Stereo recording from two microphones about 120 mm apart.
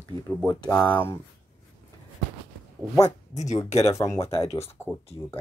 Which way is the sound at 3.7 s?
60° left (ahead or behind).